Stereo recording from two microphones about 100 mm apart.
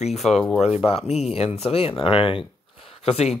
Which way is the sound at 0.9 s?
90° left.